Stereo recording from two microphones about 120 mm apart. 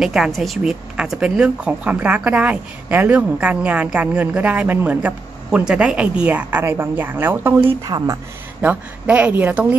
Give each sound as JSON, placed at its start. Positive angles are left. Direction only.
{"t": 0.0, "sound": "speech", "side_deg": -5}
{"t": 7.8, "sound": "speech", "side_deg": -30}
{"t": 8.5, "sound": "speech", "side_deg": -10}